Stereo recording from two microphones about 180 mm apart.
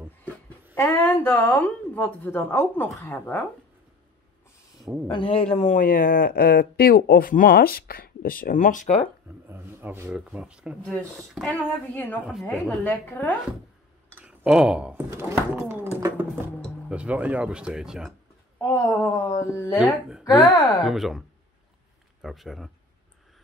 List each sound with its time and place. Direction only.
0.7 s a woman's voice: 10° left (ahead or behind)
5.0 s speech: 25° left (ahead or behind); by 9.0 s 45° left (ahead or behind)
9.5 s speech: 10° right (ahead or behind)
11.4 s a woman's voice: 10° left (ahead or behind)
12.3 s speech: centre (ahead or behind)
12.8 s a woman's voice: 10° left (ahead or behind)
14.1 s speech: 5° right (ahead or behind)
18.6 s a woman's voice: 15° left (ahead or behind)
19.8 s speech: 5° right (ahead or behind)
20.5 s speech: 25° left (ahead or behind)
20.8 s speech: centre (ahead or behind)
22.2 s speech: centre (ahead or behind)